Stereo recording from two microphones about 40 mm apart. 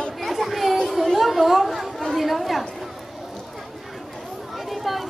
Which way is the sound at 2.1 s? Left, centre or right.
Centre.